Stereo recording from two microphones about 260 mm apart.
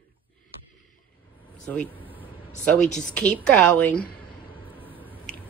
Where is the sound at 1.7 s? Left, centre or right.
Centre.